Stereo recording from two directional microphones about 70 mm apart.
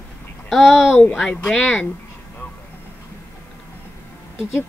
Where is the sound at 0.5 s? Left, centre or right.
Centre.